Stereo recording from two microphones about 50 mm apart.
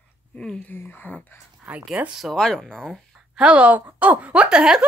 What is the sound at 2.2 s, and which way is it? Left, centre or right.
Speech, centre.